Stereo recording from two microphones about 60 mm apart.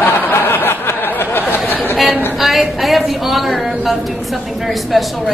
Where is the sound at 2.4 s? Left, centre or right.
Centre.